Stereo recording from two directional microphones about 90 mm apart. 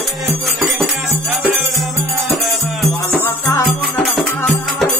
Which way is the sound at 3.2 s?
25° left (ahead or behind).